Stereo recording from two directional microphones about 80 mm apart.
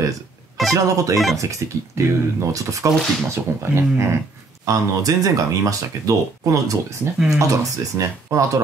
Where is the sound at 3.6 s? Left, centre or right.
Right.